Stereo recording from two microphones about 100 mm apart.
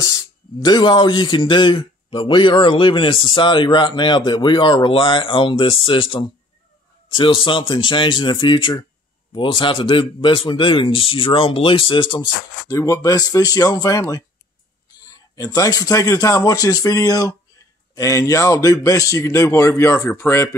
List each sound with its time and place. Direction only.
0.0 s speech: 45° left (ahead or behind)
12.6 s a man's voice: 35° left (ahead or behind)
15.0 s a man's voice: 40° left (ahead or behind); by 20.4 s 25° left (ahead or behind)